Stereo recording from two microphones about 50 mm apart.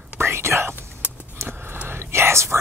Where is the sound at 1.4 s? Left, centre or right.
Right.